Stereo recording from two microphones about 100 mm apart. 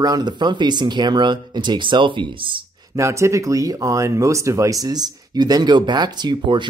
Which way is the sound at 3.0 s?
30° right (ahead or behind).